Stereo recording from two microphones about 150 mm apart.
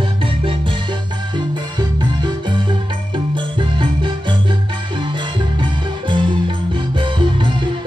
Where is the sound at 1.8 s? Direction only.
30° right (ahead or behind).